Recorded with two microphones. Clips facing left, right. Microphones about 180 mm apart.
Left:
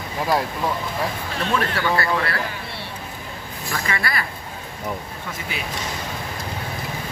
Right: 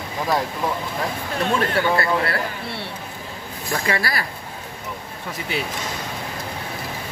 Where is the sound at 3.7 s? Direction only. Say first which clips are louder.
Right 3 dB; 35° right (ahead or behind).